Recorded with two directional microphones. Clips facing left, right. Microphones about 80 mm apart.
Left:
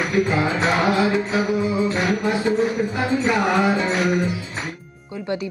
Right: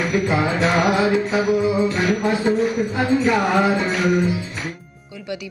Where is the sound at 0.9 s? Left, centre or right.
Right.